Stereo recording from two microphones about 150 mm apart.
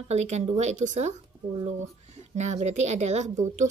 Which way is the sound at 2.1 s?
50° right (ahead or behind).